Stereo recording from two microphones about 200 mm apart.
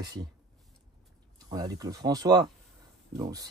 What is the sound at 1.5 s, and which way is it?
Speech, 20° right (ahead or behind).